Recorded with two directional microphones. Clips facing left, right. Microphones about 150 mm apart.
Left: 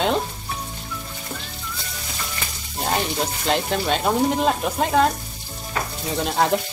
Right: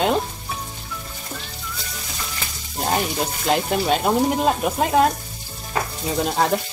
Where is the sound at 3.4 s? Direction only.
5° right (ahead or behind).